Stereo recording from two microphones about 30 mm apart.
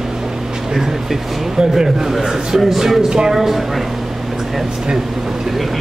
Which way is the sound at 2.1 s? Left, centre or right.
Centre.